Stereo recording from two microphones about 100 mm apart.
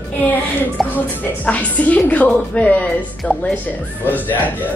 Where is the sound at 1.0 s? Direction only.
15° left (ahead or behind).